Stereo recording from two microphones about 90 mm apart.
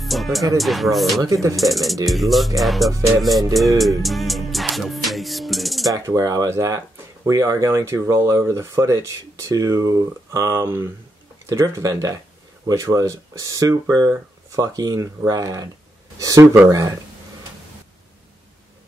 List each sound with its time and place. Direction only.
0.0 s music: centre (ahead or behind)
0.6 s speech: centre (ahead or behind)
1.2 s speech: 35° right (ahead or behind)
1.6 s speech: centre (ahead or behind)
4.0 s music: centre (ahead or behind)
5.9 s speech: 45° right (ahead or behind)